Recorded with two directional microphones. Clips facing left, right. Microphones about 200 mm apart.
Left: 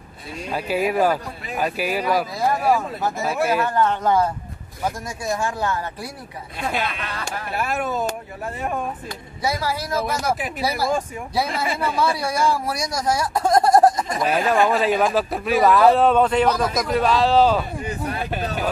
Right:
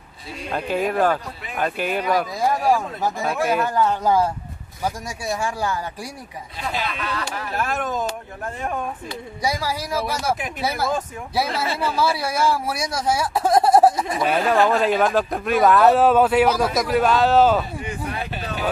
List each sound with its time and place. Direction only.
0.5 s a man's voice: 5° left (ahead or behind)
3.7 s speech: 10° right (ahead or behind)
7.5 s speech: 10° left (ahead or behind)
9.4 s a man's voice: 15° right (ahead or behind)
17.8 s speech: 45° left (ahead or behind)